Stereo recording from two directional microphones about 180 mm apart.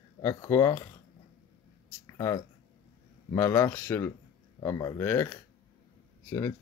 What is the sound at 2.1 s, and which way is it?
Speech, 20° left (ahead or behind).